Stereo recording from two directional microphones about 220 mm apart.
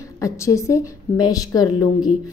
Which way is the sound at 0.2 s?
15° left (ahead or behind).